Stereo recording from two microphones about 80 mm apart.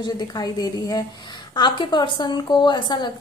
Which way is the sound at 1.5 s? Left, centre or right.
Left.